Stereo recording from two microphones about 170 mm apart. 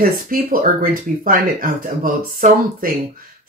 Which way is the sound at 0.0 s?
55° right (ahead or behind).